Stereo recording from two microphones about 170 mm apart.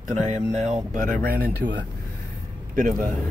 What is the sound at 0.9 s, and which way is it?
Speech, 55° right (ahead or behind).